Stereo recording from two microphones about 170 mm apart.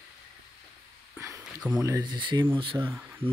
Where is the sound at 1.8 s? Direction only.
20° right (ahead or behind).